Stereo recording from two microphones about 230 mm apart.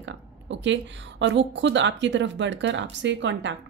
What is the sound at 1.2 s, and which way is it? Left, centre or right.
Speech, right.